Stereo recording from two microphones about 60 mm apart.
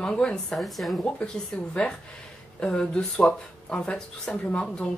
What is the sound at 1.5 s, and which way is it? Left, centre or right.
Speech, centre.